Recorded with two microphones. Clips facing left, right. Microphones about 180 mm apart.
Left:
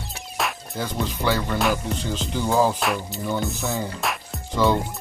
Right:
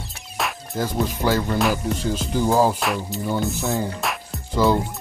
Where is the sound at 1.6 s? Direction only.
5° right (ahead or behind).